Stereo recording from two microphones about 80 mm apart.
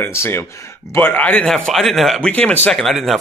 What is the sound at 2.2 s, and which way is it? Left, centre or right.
Speech, centre.